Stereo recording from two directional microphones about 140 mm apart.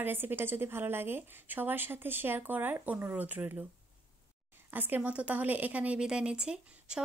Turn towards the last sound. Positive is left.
turn(degrees=-5)  # may be behind; listen again after turning